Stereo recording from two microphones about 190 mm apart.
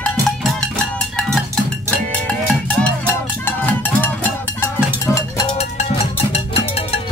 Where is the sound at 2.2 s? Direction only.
5° left (ahead or behind).